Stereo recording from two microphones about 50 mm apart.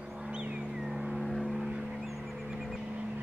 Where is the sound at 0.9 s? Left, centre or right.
Centre.